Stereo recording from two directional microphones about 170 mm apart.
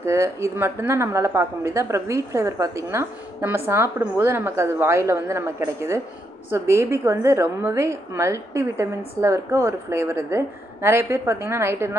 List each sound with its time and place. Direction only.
0.0 s a woman's voice: 15° right (ahead or behind)